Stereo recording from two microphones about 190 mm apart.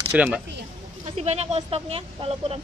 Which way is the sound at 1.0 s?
35° right (ahead or behind).